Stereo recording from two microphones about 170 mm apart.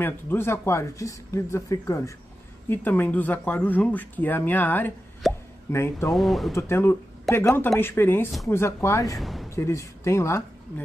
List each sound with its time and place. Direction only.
0.0 s speech: 15° left (ahead or behind)
5.2 s speech: centre (ahead or behind)
5.7 s speech: 15° left (ahead or behind)
6.1 s speech: centre (ahead or behind)
6.5 s speech: 15° left (ahead or behind)
9.2 s music: centre (ahead or behind)
9.6 s speech: 15° left (ahead or behind)